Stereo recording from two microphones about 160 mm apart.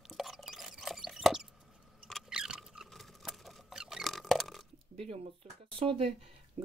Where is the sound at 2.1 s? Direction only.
Centre (ahead or behind).